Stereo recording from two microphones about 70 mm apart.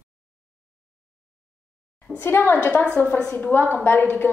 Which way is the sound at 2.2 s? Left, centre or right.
Left.